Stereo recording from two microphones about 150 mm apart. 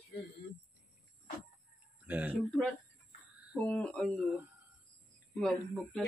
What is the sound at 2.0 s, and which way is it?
Speech, 10° right (ahead or behind).